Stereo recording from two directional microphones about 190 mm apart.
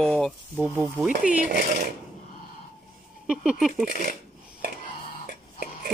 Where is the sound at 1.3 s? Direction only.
45° right (ahead or behind).